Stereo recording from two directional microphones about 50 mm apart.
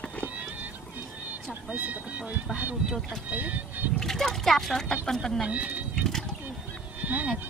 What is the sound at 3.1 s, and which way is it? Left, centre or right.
Speech, right.